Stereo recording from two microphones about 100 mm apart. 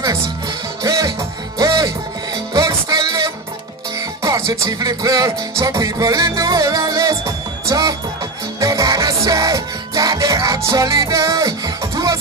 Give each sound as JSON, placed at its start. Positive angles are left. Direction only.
{"t": 0.8, "sound": "music", "side_deg": -35}